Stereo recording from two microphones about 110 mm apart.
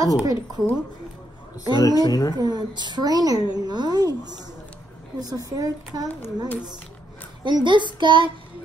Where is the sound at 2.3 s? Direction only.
35° right (ahead or behind).